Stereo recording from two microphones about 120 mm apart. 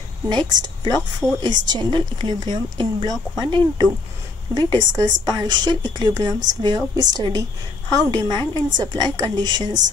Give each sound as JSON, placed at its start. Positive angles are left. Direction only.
{"t": 0.3, "sound": "a woman's voice", "side_deg": -35}